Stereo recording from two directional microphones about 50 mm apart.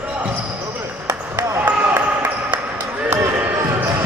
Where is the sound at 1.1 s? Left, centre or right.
Right.